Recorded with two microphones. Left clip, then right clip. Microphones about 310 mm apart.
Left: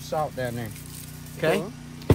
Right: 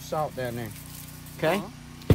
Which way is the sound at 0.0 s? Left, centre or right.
Right.